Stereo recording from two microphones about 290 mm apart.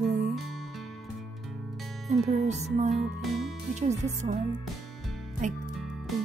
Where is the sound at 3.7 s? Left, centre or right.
Right.